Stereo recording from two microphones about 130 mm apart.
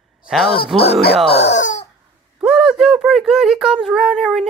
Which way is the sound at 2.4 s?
5° right (ahead or behind).